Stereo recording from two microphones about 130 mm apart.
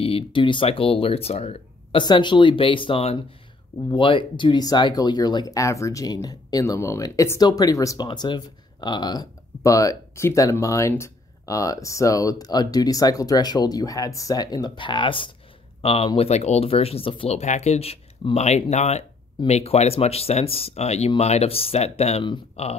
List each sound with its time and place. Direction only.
0.0 s speech: 45° left (ahead or behind)
2.0 s speech: 35° left (ahead or behind); by 22.7 s 50° left (ahead or behind)